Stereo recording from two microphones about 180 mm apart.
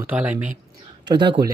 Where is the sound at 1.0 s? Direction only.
25° right (ahead or behind).